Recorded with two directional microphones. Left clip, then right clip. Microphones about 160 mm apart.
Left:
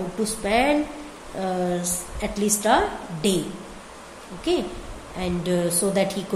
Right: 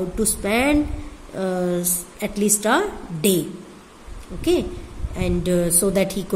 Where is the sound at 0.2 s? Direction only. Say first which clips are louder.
Even; 55° right (ahead or behind).